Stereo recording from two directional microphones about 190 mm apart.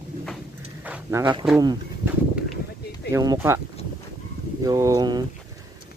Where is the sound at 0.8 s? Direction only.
5° right (ahead or behind).